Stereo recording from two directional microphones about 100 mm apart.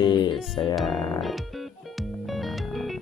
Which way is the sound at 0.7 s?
Centre (ahead or behind).